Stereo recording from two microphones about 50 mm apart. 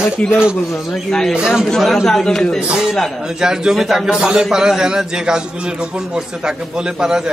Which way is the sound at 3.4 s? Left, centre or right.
Centre.